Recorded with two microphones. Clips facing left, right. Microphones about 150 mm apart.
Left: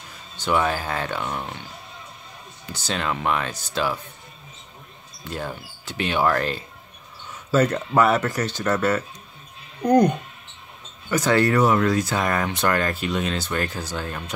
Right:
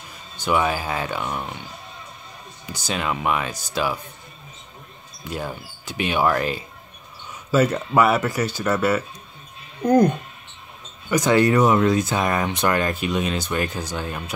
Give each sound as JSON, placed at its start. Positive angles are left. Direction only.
{"t": 0.4, "sound": "speech", "side_deg": -10}
{"t": 5.2, "sound": "speech", "side_deg": -10}
{"t": 11.1, "sound": "speech", "side_deg": -15}